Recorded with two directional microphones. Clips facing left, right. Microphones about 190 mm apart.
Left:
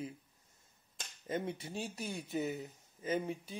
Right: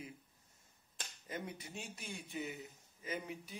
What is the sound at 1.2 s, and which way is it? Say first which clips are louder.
Speech: left 8 dB; 25° left (ahead or behind).